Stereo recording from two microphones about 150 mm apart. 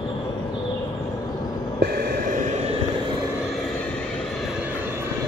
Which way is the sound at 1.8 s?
75° right (ahead or behind).